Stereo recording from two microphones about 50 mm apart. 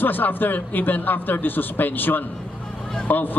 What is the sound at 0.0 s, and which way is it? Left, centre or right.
A man's voice, left.